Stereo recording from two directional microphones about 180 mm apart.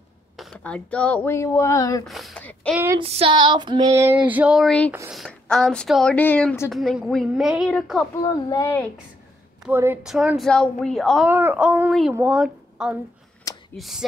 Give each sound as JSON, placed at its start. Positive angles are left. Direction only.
{"t": 0.4, "sound": "speech", "side_deg": 5}
{"t": 2.0, "sound": "a woman's voice", "side_deg": 0}
{"t": 3.0, "sound": "female singing", "side_deg": -30}
{"t": 5.1, "sound": "a woman's voice", "side_deg": 0}
{"t": 6.7, "sound": "a woman's voice", "side_deg": 0}
{"t": 8.2, "sound": "speech", "side_deg": 20}
{"t": 9.7, "sound": "a woman's voice", "side_deg": -10}
{"t": 11.2, "sound": "a woman's voice", "side_deg": -10}